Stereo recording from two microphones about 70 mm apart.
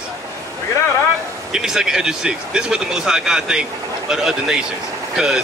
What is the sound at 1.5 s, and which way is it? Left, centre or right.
Speech, centre.